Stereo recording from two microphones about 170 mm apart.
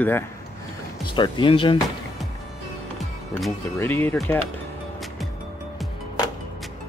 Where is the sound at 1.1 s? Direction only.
30° left (ahead or behind).